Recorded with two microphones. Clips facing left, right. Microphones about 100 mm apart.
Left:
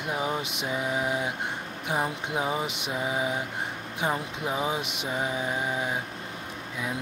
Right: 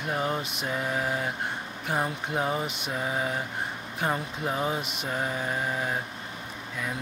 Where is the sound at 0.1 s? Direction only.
5° left (ahead or behind).